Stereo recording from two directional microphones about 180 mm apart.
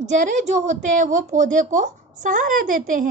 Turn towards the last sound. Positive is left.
turn(degrees=-50)  # may be behind; listen again after turning